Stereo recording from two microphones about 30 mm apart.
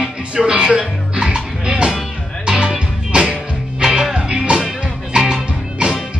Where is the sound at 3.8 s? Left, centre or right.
Centre.